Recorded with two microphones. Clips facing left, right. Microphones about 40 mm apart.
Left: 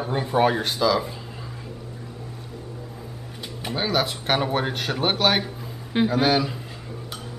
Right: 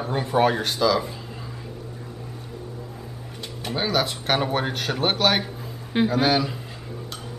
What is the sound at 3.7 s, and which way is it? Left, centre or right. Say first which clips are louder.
A woman's voice: even; centre.